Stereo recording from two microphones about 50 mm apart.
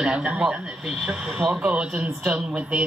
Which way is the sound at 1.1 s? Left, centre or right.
Centre.